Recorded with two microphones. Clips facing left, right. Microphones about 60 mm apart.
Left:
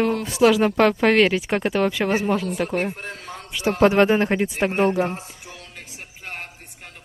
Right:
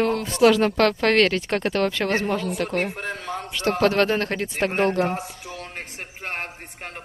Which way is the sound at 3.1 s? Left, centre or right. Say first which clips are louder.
Right 5 dB; right.